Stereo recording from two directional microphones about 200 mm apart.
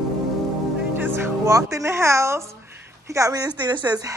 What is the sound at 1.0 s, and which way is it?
Speech, 15° right (ahead or behind).